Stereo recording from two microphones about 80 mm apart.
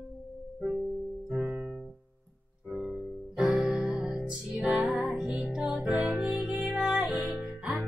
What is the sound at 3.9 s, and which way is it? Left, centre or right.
Music, centre.